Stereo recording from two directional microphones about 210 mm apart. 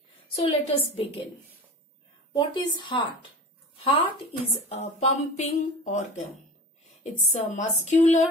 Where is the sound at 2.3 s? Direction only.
20° left (ahead or behind).